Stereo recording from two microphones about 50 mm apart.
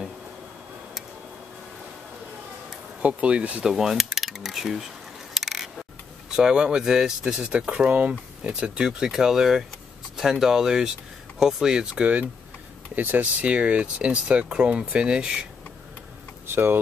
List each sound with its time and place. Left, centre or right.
3.0 s speech: right
3.6 s mechanisms: centre
5.3 s a sound: centre
6.3 s speech: centre
12.9 s speech: right; by 15.4 s centre
16.4 s speech: right